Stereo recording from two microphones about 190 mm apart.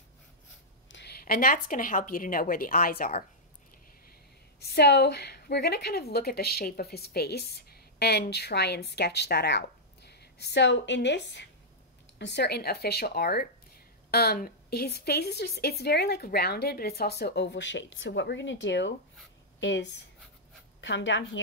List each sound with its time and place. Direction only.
0.8 s a woman's voice: 65° left (ahead or behind); by 3.3 s 50° left (ahead or behind)
4.6 s a woman's voice: 60° left (ahead or behind); by 21.4 s 75° left (ahead or behind)